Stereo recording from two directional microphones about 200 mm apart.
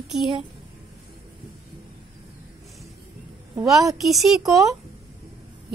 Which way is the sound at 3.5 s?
15° right (ahead or behind).